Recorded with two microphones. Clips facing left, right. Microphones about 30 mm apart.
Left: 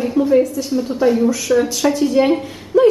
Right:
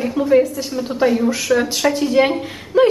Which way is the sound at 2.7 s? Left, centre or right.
Right.